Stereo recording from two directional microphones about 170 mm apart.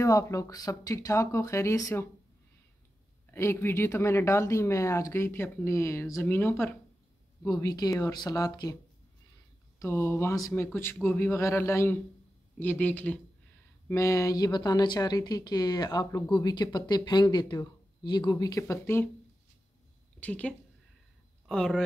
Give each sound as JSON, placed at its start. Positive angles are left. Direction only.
{"t": 0.0, "sound": "speech", "side_deg": 20}
{"t": 3.3, "sound": "speech", "side_deg": 15}
{"t": 9.8, "sound": "speech", "side_deg": 15}
{"t": 20.2, "sound": "a woman's voice", "side_deg": 10}